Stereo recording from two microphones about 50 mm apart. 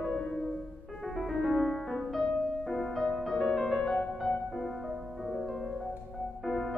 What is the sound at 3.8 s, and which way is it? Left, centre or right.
Music, centre.